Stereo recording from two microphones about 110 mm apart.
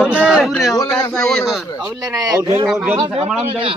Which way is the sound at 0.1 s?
10° right (ahead or behind).